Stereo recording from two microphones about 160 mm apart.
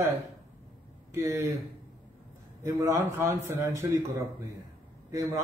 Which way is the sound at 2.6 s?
20° right (ahead or behind).